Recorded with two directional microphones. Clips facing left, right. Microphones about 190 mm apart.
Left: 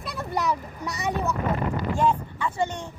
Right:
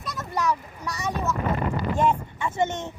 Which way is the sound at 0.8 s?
15° left (ahead or behind).